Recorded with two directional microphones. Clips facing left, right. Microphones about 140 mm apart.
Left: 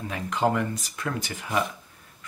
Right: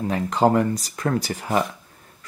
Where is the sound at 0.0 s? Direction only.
40° right (ahead or behind).